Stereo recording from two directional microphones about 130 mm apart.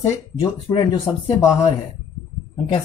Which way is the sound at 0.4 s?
40° left (ahead or behind).